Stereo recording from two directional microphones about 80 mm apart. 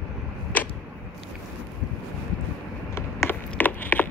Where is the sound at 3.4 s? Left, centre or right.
Left.